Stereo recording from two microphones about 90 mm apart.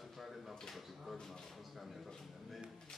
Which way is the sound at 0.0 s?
Centre (ahead or behind).